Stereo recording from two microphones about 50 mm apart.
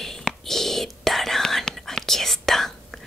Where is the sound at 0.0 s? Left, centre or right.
Centre.